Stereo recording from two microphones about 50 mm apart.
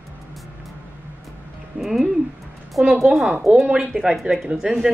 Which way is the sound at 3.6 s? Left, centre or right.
Right.